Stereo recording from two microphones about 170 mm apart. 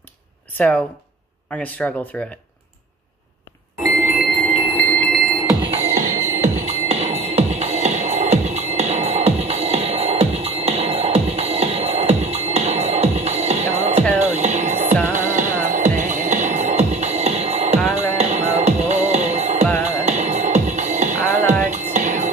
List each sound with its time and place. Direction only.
1.6 s speech: 10° left (ahead or behind)
4.8 s music: 5° left (ahead or behind)
5.7 s music: 45° right (ahead or behind)